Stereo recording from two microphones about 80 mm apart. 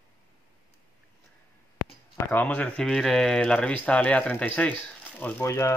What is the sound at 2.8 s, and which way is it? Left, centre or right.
Speech, centre.